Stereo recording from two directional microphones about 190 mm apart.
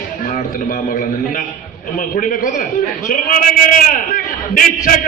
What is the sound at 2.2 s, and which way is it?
A man's voice, 45° left (ahead or behind).